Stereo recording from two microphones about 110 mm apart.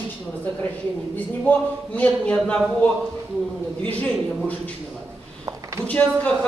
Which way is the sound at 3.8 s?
15° left (ahead or behind).